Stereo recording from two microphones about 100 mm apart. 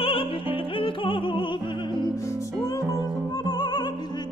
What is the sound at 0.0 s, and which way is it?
Music, 65° left (ahead or behind).